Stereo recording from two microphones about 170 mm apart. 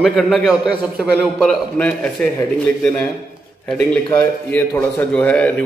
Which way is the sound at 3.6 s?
5° left (ahead or behind).